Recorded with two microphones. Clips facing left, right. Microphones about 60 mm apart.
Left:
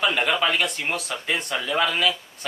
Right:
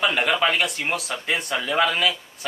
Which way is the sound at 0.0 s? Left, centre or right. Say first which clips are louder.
Right 1 dB; centre.